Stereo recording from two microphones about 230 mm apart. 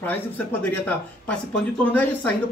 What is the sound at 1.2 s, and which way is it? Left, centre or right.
A man's voice, centre.